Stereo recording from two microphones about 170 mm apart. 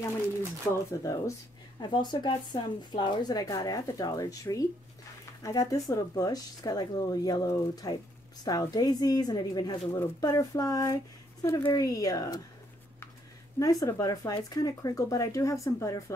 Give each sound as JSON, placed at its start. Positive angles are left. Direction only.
{"t": 1.0, "sound": "speech", "side_deg": 20}
{"t": 13.6, "sound": "speech", "side_deg": 20}